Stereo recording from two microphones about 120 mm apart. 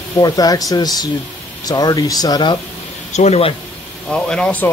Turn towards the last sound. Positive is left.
turn(degrees=10)  # may be behind; listen again after turning